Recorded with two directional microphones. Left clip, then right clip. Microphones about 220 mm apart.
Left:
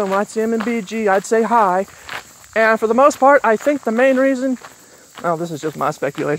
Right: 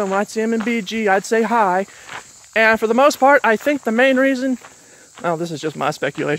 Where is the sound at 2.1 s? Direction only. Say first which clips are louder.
Left 4 dB; 50° left (ahead or behind).